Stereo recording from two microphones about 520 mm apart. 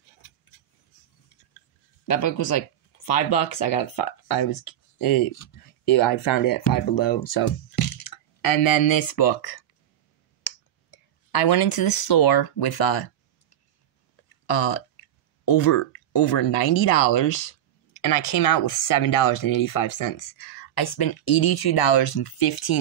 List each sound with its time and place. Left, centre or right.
2.0 s speech: left
10.4 s clicking: left
14.3 s speech: left